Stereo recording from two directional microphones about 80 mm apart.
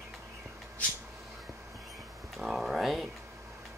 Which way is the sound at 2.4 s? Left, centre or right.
Centre.